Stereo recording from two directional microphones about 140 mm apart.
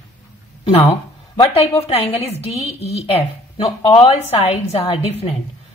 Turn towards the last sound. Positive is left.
turn(degrees=45)  # may be behind; listen again after turning